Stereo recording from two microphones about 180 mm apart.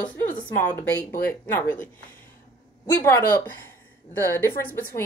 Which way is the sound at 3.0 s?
15° left (ahead or behind).